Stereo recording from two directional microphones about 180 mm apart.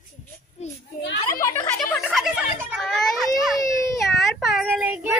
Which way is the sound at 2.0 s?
5° right (ahead or behind).